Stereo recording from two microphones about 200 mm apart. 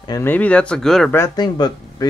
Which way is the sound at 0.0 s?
15° left (ahead or behind).